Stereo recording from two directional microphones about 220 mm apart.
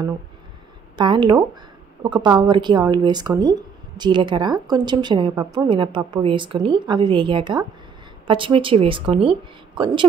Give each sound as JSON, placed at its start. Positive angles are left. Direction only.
{"t": 0.9, "sound": "speech", "side_deg": -20}